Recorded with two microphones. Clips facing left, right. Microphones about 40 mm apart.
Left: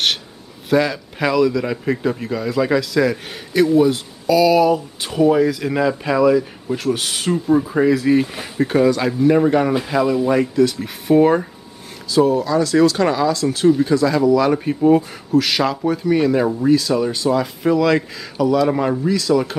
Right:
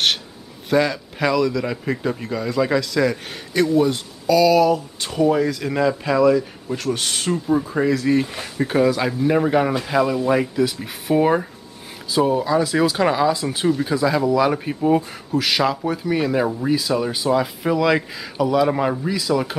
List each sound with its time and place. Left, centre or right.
0.7 s a man's voice: centre
12.3 s speech: centre
13.7 s a man's voice: centre
13.9 s a man's voice: centre